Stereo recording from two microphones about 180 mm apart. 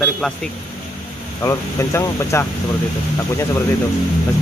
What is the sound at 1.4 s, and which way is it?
Speech, 15° left (ahead or behind).